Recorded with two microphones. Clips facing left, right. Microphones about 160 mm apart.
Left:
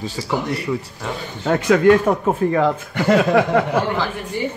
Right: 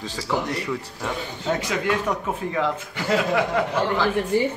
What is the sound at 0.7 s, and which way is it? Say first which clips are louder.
Speech: left 5 dB; 15° left (ahead or behind).